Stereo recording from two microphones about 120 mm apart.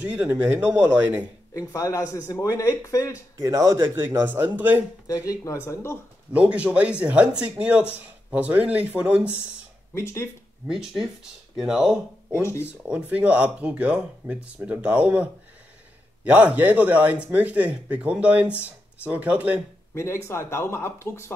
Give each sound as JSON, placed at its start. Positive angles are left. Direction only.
{"t": 0.0, "sound": "speech", "side_deg": -15}
{"t": 1.5, "sound": "speech", "side_deg": 25}
{"t": 3.3, "sound": "a man's voice", "side_deg": -30}
{"t": 5.0, "sound": "speech", "side_deg": 30}
{"t": 6.3, "sound": "speech", "side_deg": -10}
{"t": 9.9, "sound": "speech", "side_deg": 20}
{"t": 10.7, "sound": "speech", "side_deg": -5}
{"t": 16.3, "sound": "speech", "side_deg": -10}
{"t": 19.9, "sound": "speech", "side_deg": 25}